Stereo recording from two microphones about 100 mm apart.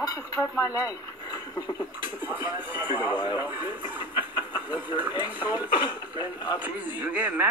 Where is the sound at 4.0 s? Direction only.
55° left (ahead or behind).